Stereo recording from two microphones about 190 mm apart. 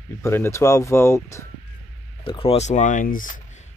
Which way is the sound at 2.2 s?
30° left (ahead or behind).